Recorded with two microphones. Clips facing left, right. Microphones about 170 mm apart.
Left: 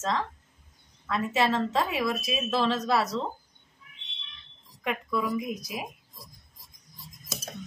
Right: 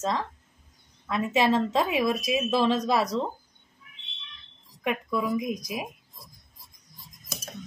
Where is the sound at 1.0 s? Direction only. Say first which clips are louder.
Right 2 dB; 15° right (ahead or behind).